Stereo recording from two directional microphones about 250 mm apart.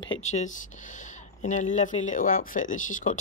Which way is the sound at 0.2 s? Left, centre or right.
Left.